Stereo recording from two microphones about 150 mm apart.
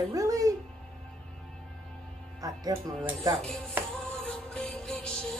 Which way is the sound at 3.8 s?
5° left (ahead or behind).